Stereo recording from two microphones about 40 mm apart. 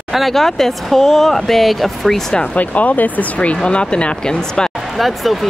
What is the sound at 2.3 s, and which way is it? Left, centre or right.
Speech, left.